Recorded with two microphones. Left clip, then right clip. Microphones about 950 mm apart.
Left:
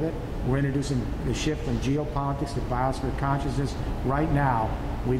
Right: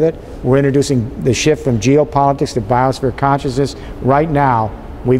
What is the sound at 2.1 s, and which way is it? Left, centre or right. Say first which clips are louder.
Speech: right 16 dB; right.